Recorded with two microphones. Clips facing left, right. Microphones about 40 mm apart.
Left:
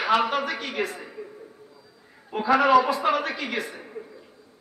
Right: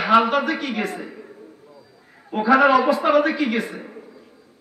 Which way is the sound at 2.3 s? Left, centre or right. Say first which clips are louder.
Right 3 dB; centre.